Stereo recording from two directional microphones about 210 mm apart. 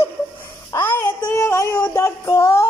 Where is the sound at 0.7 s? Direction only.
10° left (ahead or behind).